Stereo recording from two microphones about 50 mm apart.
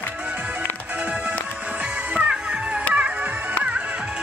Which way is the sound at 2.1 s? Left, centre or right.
Centre.